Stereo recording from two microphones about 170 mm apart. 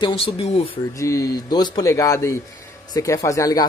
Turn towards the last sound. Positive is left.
turn(degrees=20)  # may be behind; listen again after turning